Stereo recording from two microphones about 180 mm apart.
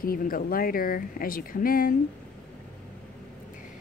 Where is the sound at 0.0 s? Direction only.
55° left (ahead or behind).